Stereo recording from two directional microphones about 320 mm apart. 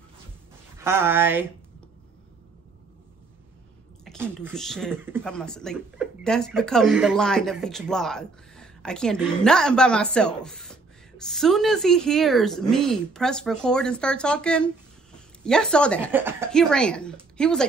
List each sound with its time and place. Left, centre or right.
0.7 s speech: centre
4.0 s speech: centre